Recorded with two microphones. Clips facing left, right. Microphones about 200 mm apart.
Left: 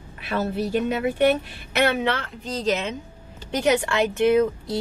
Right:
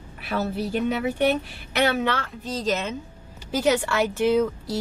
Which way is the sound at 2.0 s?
Centre (ahead or behind).